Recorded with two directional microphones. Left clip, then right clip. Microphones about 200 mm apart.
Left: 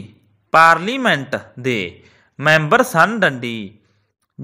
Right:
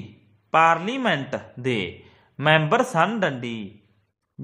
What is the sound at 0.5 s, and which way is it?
Speech, 20° left (ahead or behind).